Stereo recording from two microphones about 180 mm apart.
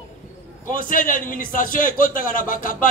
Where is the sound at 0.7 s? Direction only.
50° left (ahead or behind).